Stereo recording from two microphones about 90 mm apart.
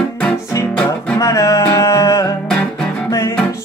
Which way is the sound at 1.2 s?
35° left (ahead or behind).